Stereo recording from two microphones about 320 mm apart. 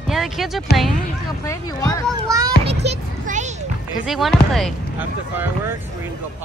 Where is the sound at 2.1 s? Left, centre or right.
Centre.